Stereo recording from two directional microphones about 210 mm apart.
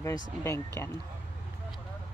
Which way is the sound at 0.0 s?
15° left (ahead or behind).